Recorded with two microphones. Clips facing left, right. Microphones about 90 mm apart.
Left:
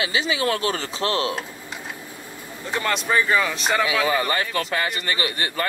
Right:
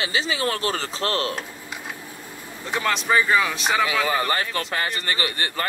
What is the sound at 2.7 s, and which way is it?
Speech, centre (ahead or behind).